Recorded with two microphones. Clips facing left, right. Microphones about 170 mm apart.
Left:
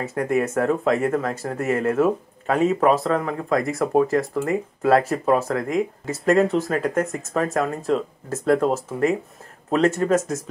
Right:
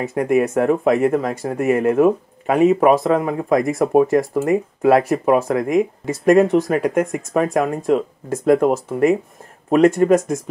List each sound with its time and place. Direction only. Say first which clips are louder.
0.0 s speech: right 5 dB; 15° right (ahead or behind)